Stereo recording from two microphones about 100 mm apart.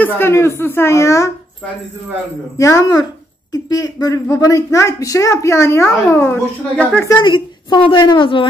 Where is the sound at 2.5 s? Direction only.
30° left (ahead or behind).